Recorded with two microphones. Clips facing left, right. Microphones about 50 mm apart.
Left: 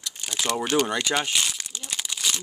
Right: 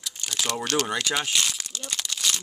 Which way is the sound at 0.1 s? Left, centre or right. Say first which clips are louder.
Left 2 dB; centre.